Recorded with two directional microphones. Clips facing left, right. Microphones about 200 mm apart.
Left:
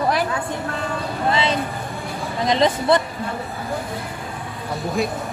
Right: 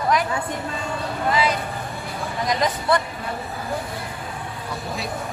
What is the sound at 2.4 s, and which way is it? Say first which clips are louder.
Speech: left 5 dB; 25° left (ahead or behind).